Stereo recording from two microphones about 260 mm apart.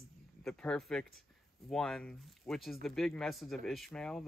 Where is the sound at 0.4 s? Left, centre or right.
Centre.